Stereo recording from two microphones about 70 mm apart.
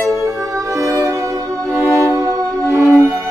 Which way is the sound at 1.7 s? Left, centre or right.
Right.